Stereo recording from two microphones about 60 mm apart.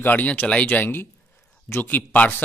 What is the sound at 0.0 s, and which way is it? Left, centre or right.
Speech, left.